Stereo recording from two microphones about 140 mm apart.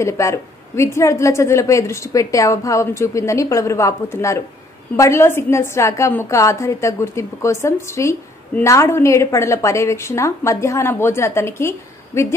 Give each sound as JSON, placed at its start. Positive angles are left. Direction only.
{"t": 0.0, "sound": "a woman's voice", "side_deg": 20}